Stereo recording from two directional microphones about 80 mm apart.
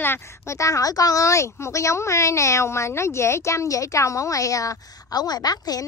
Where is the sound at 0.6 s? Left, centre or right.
Left.